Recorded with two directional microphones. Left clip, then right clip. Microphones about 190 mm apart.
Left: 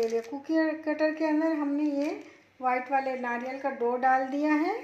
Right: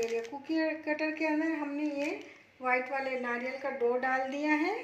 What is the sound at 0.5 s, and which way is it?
Speech, 45° left (ahead or behind).